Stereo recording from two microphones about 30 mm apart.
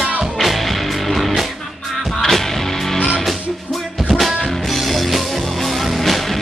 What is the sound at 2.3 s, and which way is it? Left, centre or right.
Music, centre.